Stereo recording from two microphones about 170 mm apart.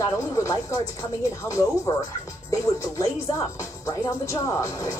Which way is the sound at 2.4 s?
20° left (ahead or behind).